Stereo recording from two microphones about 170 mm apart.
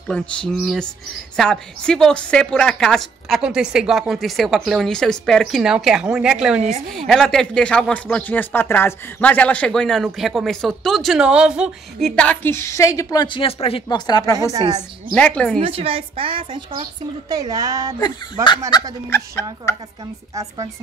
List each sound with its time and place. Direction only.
0.1 s a woman's voice: 5° left (ahead or behind)
12.2 s a woman's voice: 10° left (ahead or behind)
15.1 s speech: 5° left (ahead or behind)
15.6 s a woman's voice: 35° right (ahead or behind)
18.0 s a woman's voice: 25° left (ahead or behind)
19.0 s speech: 15° left (ahead or behind)
20.3 s speech: 20° right (ahead or behind)